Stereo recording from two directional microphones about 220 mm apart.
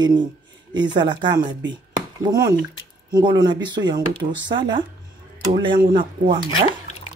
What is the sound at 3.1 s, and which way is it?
Speech, 20° right (ahead or behind).